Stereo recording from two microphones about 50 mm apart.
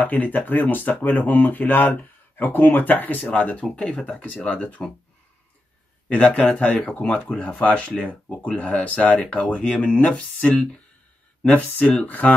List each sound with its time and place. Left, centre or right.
0.0 s speech: left; by 4.0 s centre
4.2 s speech: left
6.0 s speech: left